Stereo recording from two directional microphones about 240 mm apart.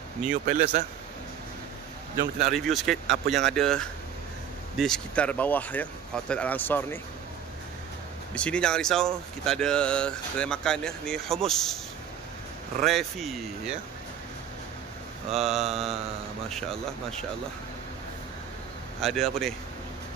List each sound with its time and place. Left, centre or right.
0.5 s a man's voice: right
2.5 s speech: centre
8.4 s speech: centre
12.8 s speech: centre
15.3 s speech: centre
18.9 s speech: centre